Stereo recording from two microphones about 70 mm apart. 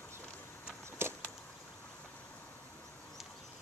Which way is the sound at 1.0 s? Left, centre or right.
Right.